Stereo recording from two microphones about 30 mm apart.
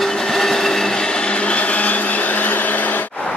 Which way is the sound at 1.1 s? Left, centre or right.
Left.